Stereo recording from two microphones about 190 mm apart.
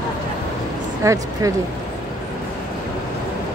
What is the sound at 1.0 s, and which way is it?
Speech, 15° right (ahead or behind).